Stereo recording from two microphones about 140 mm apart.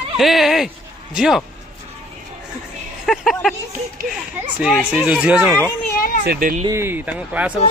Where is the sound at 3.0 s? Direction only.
Centre (ahead or behind).